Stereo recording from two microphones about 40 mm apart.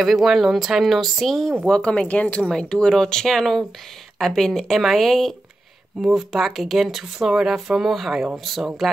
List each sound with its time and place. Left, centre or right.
0.0 s speech: centre
1.7 s speech: left
2.0 s speech: left
2.4 s speech: centre
5.9 s speech: centre